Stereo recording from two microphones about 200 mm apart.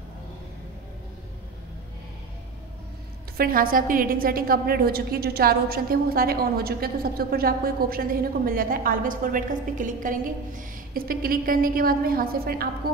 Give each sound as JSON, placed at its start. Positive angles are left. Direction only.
{"t": 3.3, "sound": "a woman's voice", "side_deg": -45}